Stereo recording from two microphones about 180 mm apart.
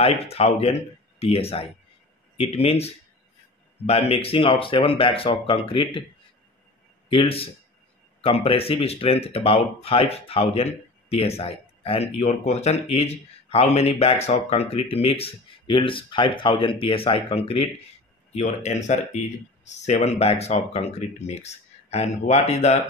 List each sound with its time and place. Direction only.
0.0 s speech: 35° left (ahead or behind)
7.1 s speech: 30° left (ahead or behind)